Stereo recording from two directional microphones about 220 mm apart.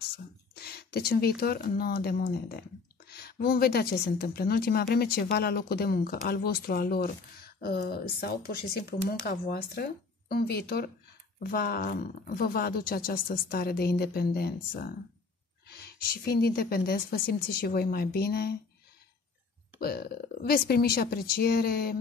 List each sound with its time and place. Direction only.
0.6 s a woman's voice: 45° left (ahead or behind)
19.8 s a woman's voice: 45° left (ahead or behind)